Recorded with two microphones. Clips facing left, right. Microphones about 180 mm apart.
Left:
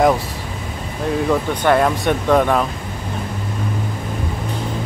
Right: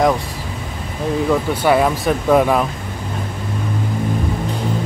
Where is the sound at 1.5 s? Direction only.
5° right (ahead or behind).